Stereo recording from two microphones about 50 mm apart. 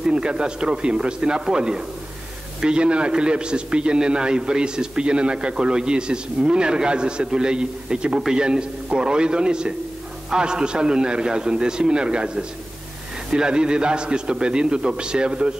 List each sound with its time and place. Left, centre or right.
0.0 s a man's voice: centre